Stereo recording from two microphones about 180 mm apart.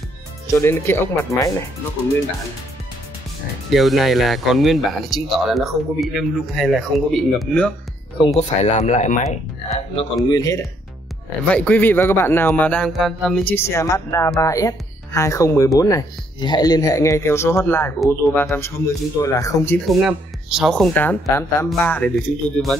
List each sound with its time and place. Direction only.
0.6 s a man's voice: 10° left (ahead or behind)
3.7 s speech: centre (ahead or behind)
8.4 s speech: 40° left (ahead or behind)
10.3 s speech: 20° left (ahead or behind)
11.4 s a man's voice: 10° left (ahead or behind)
19.9 s speech: 5° right (ahead or behind)